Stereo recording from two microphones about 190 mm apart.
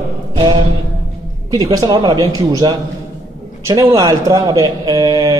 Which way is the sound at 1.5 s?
20° right (ahead or behind).